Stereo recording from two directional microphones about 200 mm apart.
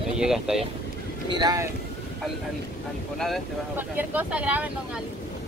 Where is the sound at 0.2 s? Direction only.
Centre (ahead or behind).